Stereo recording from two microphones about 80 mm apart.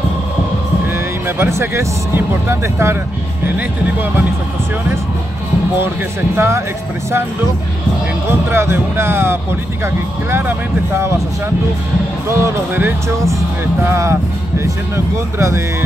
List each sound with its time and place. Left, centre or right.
1.4 s speech: right
6.3 s speech: right
8.3 s speech: right
12.3 s speech: right
13.8 s speech: right
15.3 s speech: right